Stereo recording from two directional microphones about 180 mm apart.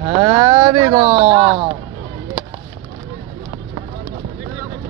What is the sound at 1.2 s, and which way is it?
Speech, 35° right (ahead or behind).